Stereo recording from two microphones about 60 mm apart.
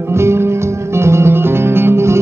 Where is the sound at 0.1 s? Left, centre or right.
Right.